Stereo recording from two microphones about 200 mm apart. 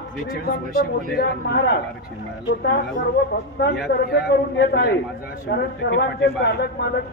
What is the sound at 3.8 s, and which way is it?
A man's voice, 50° left (ahead or behind).